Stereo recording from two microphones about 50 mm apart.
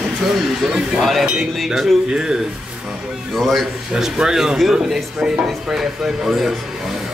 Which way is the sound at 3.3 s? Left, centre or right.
Centre.